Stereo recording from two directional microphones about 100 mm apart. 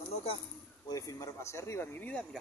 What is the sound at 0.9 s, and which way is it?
Speech, 35° left (ahead or behind).